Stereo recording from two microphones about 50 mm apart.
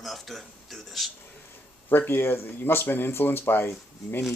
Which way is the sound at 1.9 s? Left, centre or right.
Left.